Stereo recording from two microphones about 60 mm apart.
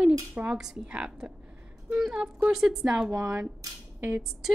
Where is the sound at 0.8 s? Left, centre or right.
Centre.